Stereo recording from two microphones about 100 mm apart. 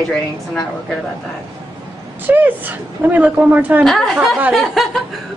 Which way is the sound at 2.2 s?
20° right (ahead or behind).